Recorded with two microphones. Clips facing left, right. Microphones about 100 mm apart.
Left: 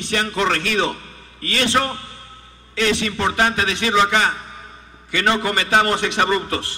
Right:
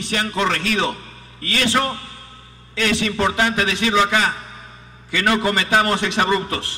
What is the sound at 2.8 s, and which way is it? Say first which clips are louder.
A man's voice: even; 30° left (ahead or behind).